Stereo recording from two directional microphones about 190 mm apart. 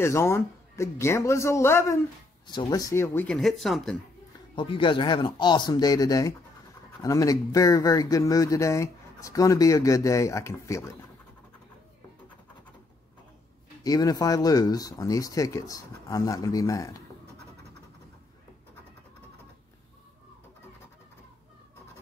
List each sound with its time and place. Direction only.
0.0 s speech: 15° left (ahead or behind)
4.6 s speech: 25° left (ahead or behind)
13.8 s speech: 20° left (ahead or behind)